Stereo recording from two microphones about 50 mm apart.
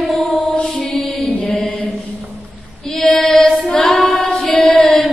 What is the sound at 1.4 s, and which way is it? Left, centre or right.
Mantra, left.